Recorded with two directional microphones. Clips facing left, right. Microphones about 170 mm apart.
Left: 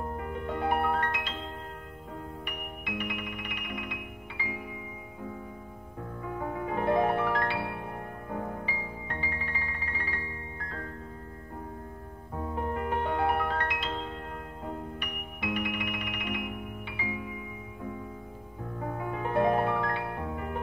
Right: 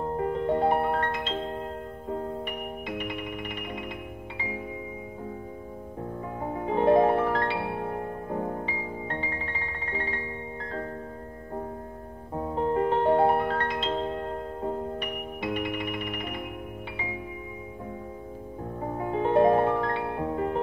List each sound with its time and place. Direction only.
0.0 s music: 30° right (ahead or behind)
2.4 s music: 30° right (ahead or behind)
6.6 s music: 25° right (ahead or behind)
8.6 s music: 30° right (ahead or behind)
12.4 s music: 30° right (ahead or behind)
18.9 s music: 25° right (ahead or behind)